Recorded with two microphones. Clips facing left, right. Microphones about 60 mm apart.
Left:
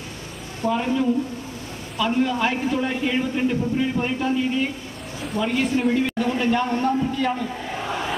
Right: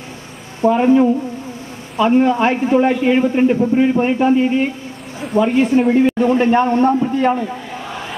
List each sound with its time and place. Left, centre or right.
0.7 s a man's voice: right